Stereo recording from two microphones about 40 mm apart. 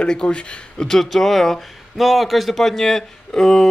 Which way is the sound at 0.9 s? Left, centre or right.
Centre.